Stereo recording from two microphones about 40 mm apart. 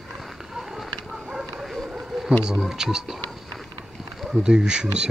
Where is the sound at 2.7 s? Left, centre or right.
Centre.